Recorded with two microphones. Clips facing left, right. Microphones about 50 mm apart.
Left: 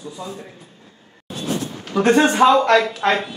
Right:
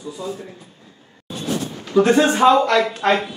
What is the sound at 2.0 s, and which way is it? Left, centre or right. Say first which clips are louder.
Speech: even; left.